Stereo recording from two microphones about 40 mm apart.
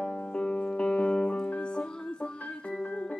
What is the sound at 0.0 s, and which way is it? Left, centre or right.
Music, left.